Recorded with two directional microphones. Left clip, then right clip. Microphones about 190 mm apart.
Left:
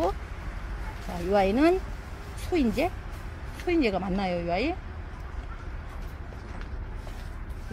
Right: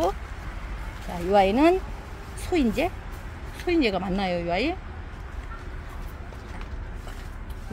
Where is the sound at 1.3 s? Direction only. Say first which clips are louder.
Right 3 dB; 5° right (ahead or behind).